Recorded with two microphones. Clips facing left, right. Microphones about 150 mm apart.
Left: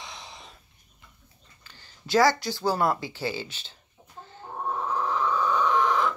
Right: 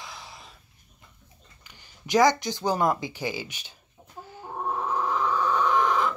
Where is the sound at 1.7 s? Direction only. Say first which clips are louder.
Even; 15° right (ahead or behind).